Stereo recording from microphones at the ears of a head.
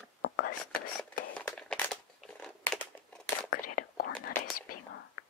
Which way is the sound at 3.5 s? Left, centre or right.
Left.